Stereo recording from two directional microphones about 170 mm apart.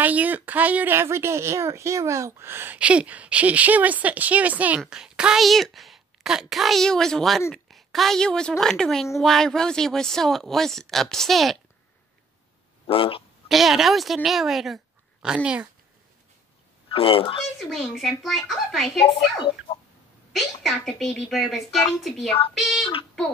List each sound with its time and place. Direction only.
0.0 s a woman's voice: 10° right (ahead or behind)
12.8 s speech: 30° left (ahead or behind)
13.5 s speech: centre (ahead or behind)
16.9 s speech: 30° left (ahead or behind)
17.6 s speech: centre (ahead or behind)
20.3 s speech: centre (ahead or behind)